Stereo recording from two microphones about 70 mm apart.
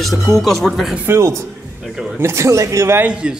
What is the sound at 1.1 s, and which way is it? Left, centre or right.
Speech, right.